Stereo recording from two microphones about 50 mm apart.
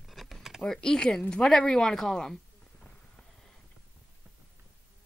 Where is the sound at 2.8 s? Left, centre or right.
Centre.